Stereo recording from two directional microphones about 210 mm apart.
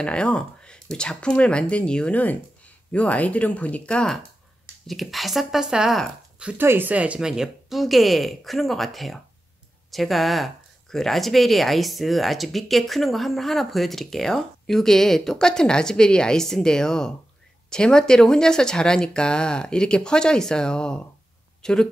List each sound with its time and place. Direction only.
0.0 s speech: 5° left (ahead or behind)